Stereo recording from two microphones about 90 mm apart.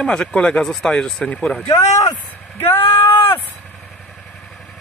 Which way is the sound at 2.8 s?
90° left.